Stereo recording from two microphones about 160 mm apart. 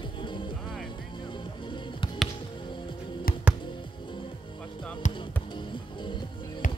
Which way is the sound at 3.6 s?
30° left (ahead or behind).